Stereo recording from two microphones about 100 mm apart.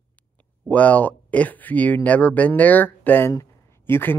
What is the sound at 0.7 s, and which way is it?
Speech, 15° left (ahead or behind).